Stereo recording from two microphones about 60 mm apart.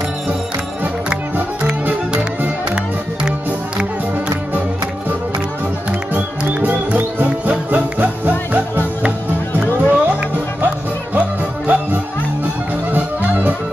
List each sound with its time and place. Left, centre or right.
1.6 s music: centre
5.9 s music: right
9.6 s music: centre
10.0 s music: right